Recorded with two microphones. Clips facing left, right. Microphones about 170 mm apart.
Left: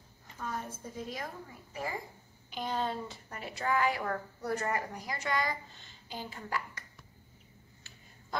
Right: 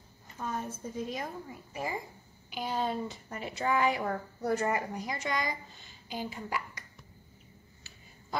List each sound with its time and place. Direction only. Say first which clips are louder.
0.4 s a woman's voice: right 3 dB; 25° right (ahead or behind)